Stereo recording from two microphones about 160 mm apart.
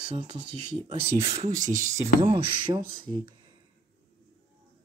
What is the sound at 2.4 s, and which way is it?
Speech, 30° right (ahead or behind).